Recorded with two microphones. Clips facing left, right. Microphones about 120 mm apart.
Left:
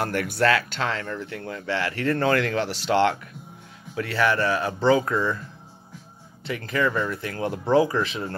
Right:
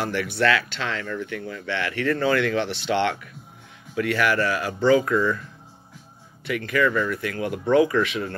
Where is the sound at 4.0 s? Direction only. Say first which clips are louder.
Right 1 dB; 30° left (ahead or behind).